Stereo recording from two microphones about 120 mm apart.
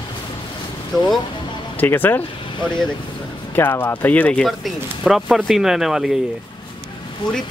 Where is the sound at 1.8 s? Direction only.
15° left (ahead or behind).